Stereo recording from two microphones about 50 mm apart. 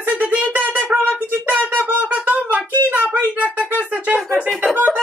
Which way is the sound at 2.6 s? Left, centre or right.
Left.